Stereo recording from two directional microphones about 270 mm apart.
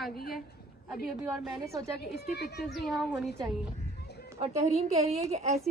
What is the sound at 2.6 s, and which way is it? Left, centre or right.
Speech, centre.